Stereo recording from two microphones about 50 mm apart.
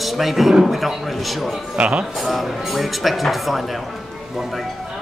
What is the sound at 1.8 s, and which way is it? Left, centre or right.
Speech, right.